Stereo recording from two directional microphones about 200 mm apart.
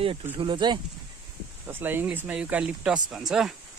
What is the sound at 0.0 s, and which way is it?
Speech, 30° right (ahead or behind).